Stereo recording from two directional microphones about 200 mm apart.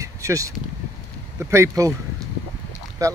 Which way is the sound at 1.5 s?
15° right (ahead or behind).